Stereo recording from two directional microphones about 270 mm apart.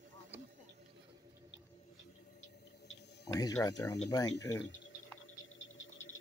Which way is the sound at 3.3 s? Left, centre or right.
Centre.